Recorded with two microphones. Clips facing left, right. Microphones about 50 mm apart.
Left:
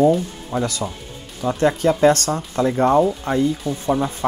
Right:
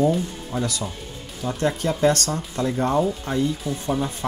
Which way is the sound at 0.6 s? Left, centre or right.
Left.